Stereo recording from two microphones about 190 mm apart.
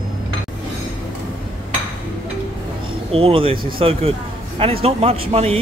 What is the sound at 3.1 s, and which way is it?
A man's voice, 30° right (ahead or behind).